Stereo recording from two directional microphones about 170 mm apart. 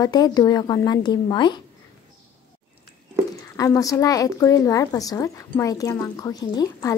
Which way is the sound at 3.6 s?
20° left (ahead or behind).